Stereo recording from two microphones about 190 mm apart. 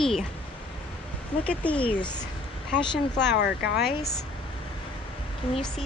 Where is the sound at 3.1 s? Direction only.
60° left (ahead or behind).